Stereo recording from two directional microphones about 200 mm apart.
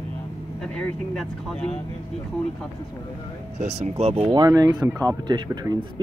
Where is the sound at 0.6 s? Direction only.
5° left (ahead or behind).